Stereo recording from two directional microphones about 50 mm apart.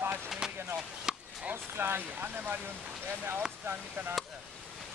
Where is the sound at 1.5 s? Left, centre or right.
Right.